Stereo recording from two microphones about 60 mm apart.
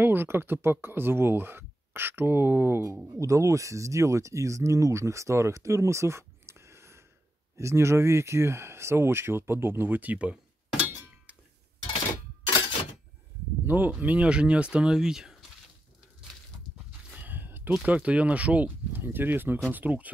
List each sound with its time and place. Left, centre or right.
0.0 s speech: right
3.2 s speech: right
13.7 s speech: right; by 15.3 s centre
17.1 s a sound: right
17.8 s speech: right
19.0 s speech: right